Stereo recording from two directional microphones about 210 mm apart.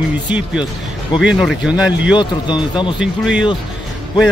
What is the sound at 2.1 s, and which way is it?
Speech, 20° left (ahead or behind).